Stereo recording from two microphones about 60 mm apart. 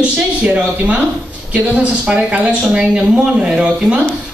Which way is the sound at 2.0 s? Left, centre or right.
Centre.